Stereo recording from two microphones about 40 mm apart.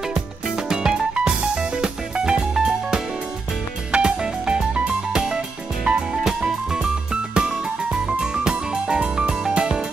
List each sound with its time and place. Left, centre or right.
0.1 s music: centre